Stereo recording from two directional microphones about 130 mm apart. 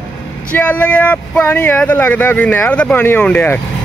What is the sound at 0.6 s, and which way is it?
Speech, 10° left (ahead or behind).